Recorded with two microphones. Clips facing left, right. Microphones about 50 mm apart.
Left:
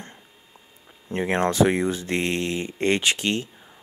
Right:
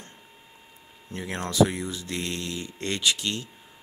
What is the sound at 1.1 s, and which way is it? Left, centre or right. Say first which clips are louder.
Speech: left 5 dB; left.